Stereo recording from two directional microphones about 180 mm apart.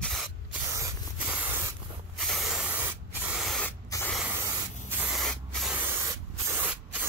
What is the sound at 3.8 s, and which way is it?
Spray, 20° left (ahead or behind).